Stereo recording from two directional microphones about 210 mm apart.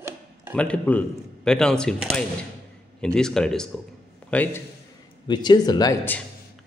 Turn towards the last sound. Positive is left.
turn(degrees=15)  # may be behind; listen again after turning